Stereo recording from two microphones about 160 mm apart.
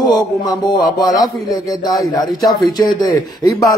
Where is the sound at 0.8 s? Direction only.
Centre (ahead or behind).